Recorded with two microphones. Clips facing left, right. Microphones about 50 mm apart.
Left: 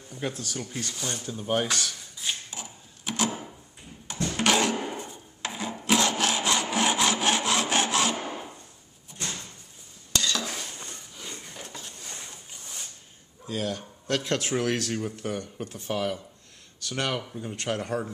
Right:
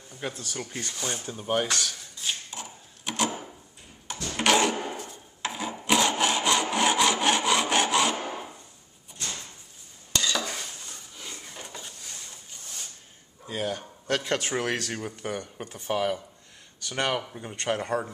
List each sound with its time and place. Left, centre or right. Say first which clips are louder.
0.1 s speech: left 2 dB; centre
1.5 s speech: even; centre
2.1 s a sound: even; centre
5.4 s sawing: right 1 dB; centre
10.1 s stir: right 1 dB; centre
11.4 s a sound: even; centre
13.5 s speech: even; centre